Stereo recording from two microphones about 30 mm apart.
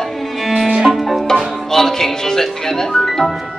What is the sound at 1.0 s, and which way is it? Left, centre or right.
Music, centre.